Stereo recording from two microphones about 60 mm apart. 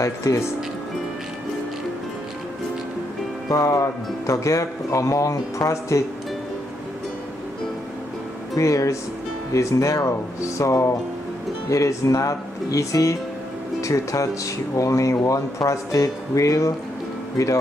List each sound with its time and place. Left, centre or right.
0.0 s speech: left
3.5 s speech: left
8.5 s speech: left